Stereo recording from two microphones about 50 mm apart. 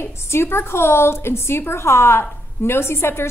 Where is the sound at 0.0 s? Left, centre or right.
Left.